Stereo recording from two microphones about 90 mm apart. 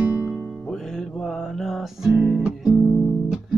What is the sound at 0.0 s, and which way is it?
Music, 20° right (ahead or behind).